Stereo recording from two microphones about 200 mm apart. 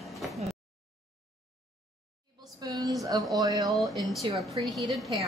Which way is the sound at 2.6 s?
20° right (ahead or behind).